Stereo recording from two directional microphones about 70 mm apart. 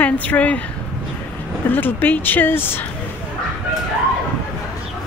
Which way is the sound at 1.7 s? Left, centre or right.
Left.